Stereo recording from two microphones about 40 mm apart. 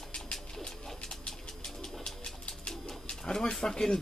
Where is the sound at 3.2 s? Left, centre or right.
Centre.